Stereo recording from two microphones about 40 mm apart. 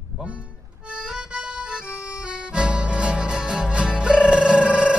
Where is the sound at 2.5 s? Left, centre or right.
Right.